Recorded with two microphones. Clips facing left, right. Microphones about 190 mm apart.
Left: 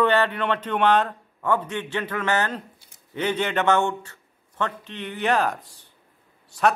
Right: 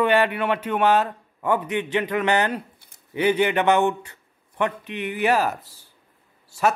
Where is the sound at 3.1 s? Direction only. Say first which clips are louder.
Right 4 dB; 10° right (ahead or behind).